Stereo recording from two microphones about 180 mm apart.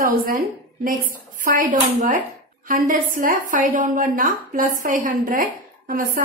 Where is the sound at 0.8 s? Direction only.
50° right (ahead or behind).